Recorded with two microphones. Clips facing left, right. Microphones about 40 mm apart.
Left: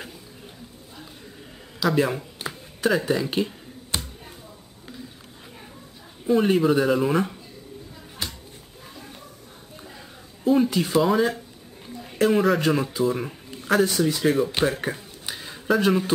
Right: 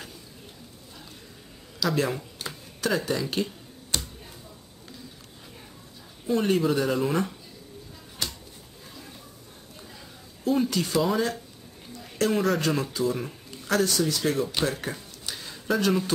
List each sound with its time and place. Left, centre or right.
1.8 s speech: centre
2.3 s a sound: left
2.9 s speech: centre
6.2 s speech: centre
8.2 s a sound: centre
10.4 s speech: centre